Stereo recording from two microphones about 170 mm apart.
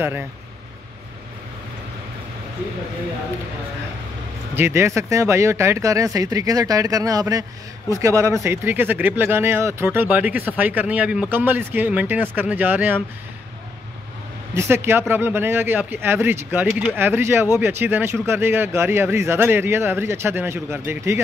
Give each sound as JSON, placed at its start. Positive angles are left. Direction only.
{"t": 0.0, "sound": "speech", "side_deg": -15}
{"t": 4.6, "sound": "speech", "side_deg": -15}
{"t": 14.5, "sound": "speech", "side_deg": -15}